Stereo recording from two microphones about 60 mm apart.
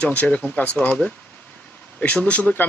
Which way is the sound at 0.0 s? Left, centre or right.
Left.